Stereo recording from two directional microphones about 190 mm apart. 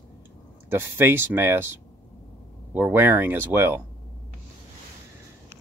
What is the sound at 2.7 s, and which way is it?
Speech, 10° right (ahead or behind).